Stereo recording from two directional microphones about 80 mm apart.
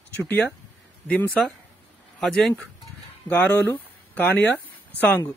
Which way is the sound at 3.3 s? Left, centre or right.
Left.